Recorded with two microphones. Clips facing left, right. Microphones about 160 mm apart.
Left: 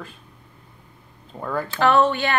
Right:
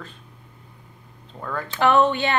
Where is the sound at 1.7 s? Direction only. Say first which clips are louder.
Even; 20° right (ahead or behind).